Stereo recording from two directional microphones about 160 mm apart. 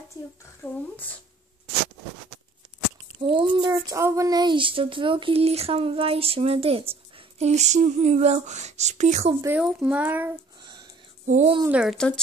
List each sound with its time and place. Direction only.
0.6 s speech: 15° left (ahead or behind)
3.2 s speech: 30° right (ahead or behind); by 9.3 s 45° right (ahead or behind)
9.8 s speech: 10° right (ahead or behind)
10.6 s a sound: 30° right (ahead or behind)
11.2 s speech: 45° right (ahead or behind)
11.6 s speech: 5° right (ahead or behind)